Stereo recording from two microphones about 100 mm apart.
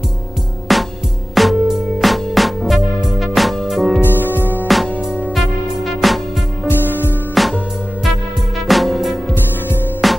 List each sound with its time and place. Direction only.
0.7 s music: centre (ahead or behind)
4.0 s music: 20° left (ahead or behind)
5.9 s music: centre (ahead or behind)
8.6 s music: centre (ahead or behind)